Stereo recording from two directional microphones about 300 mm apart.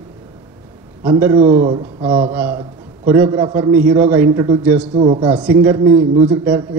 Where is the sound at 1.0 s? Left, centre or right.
Centre.